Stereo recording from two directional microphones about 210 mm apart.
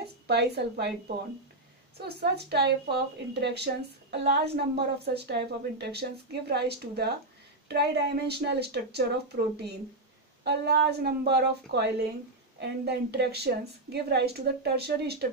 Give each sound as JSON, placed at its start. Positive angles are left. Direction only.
{"t": 0.0, "sound": "a woman's voice", "side_deg": -50}